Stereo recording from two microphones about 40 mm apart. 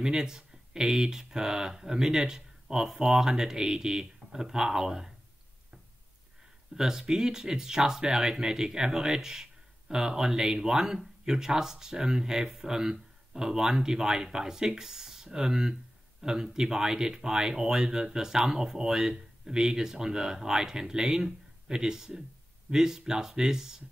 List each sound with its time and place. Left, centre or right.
0.0 s speech: centre
6.7 s speech: centre